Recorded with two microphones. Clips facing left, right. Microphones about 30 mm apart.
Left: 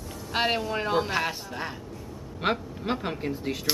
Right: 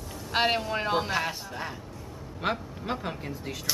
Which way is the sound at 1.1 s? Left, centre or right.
Centre.